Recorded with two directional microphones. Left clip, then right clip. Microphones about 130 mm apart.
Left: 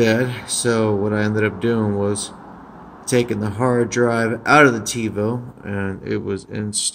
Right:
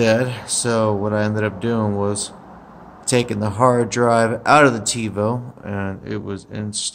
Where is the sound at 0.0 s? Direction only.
15° right (ahead or behind).